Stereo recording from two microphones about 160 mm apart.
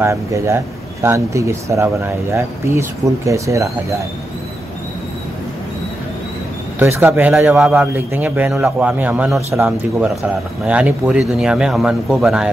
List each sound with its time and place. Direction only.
0.0 s a man's voice: 20° right (ahead or behind)
6.8 s a man's voice: 15° right (ahead or behind)